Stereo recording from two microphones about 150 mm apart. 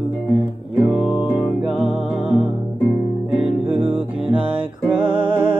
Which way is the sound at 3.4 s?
5° right (ahead or behind).